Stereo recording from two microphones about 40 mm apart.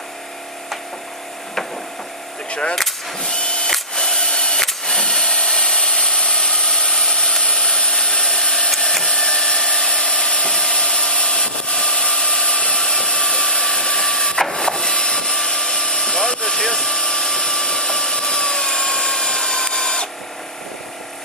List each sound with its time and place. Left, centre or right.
2.7 s vehicle: centre
3.3 s drill: left
4.8 s tools: centre
7.4 s a sound: left
9.0 s tools: left
12.8 s printer: left